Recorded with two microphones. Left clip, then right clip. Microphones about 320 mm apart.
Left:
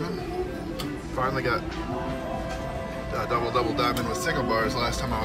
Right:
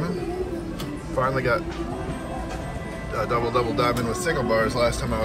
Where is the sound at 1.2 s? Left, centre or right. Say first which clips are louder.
Right 4 dB; centre.